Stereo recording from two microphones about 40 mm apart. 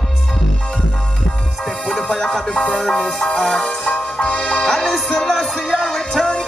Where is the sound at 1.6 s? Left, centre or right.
Centre.